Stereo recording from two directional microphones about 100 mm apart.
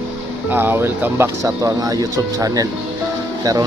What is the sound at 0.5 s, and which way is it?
Speech, 20° right (ahead or behind).